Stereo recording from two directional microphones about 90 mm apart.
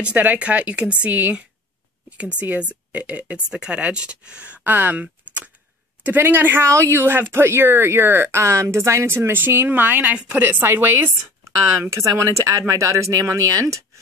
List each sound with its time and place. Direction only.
0.0 s a woman's voice: 15° right (ahead or behind); by 13.7 s 35° right (ahead or behind)